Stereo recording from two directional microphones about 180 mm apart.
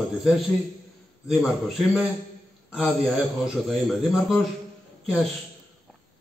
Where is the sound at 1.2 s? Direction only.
Centre (ahead or behind).